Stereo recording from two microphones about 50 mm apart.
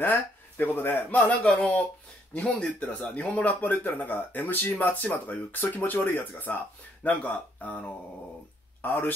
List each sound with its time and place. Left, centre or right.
0.0 s speech: left
1.4 s speech: left
2.4 s speech: centre
3.2 s speech: left